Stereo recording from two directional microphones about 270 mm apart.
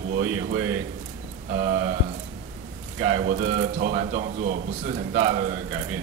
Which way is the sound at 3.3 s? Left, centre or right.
Right.